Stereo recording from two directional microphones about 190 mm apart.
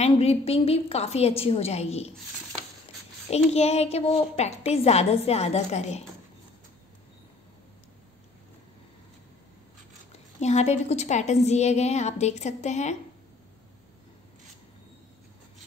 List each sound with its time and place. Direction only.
0.0 s a woman's voice: 35° left (ahead or behind)
3.3 s a woman's voice: 35° left (ahead or behind)
10.4 s a woman's voice: 35° left (ahead or behind)